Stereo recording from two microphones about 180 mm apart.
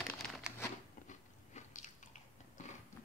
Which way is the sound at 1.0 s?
45° left (ahead or behind).